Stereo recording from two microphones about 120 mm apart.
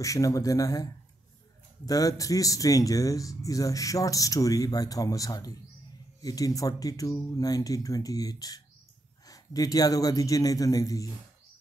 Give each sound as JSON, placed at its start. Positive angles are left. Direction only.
{"t": 0.0, "sound": "speech", "side_deg": 30}
{"t": 1.9, "sound": "a man's voice", "side_deg": 30}